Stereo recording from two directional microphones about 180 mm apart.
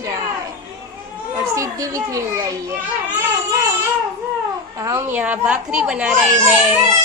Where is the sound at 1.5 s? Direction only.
15° right (ahead or behind).